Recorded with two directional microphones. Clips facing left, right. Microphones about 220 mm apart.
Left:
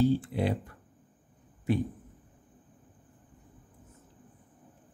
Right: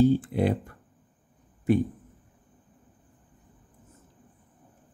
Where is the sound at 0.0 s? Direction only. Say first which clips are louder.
Right 5 dB; 50° right (ahead or behind).